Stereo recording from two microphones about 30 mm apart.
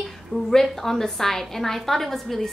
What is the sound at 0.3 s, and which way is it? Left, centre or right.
A woman's voice, centre.